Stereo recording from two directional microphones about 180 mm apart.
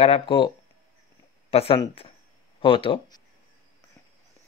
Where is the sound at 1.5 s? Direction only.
35° left (ahead or behind).